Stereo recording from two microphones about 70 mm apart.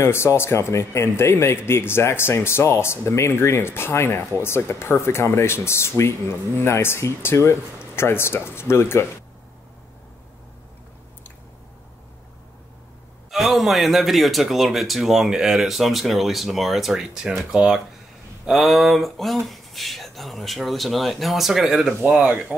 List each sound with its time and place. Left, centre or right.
0.0 s speech: left
13.3 s a man's voice: centre
22.0 s speech: centre